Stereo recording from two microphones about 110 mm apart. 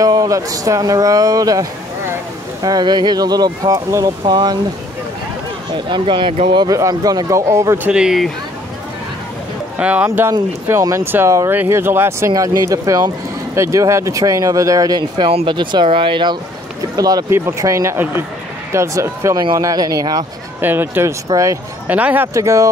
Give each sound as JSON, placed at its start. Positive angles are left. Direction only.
{"t": 0.0, "sound": "speech", "side_deg": -35}
{"t": 5.7, "sound": "speech", "side_deg": -45}
{"t": 7.9, "sound": "speech", "side_deg": -5}
{"t": 9.8, "sound": "speech", "side_deg": -10}
{"t": 10.0, "sound": "speech", "side_deg": -20}
{"t": 16.9, "sound": "speech", "side_deg": -35}
{"t": 20.6, "sound": "speech", "side_deg": -20}
{"t": 21.3, "sound": "speech", "side_deg": -30}
{"t": 21.8, "sound": "speech", "side_deg": -15}
{"t": 22.3, "sound": "speech", "side_deg": -30}